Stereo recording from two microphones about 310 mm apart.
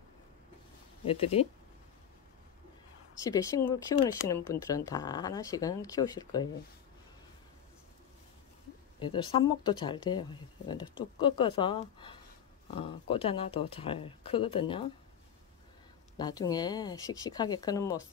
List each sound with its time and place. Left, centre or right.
1.0 s speech: centre
3.3 s speech: centre
9.0 s speech: centre
16.2 s speech: centre